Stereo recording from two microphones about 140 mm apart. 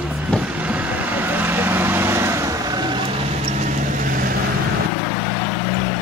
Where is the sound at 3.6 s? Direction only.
75° right (ahead or behind).